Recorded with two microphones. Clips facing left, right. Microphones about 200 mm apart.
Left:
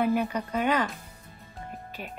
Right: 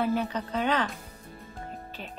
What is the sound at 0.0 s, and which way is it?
Speech, 15° left (ahead or behind).